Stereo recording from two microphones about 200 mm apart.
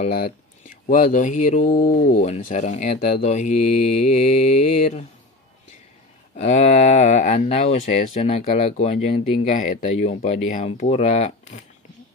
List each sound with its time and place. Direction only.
0.0 s speech: 40° left (ahead or behind)
6.3 s speech: 35° left (ahead or behind)